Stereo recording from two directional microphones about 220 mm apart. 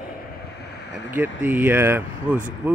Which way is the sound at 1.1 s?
10° right (ahead or behind).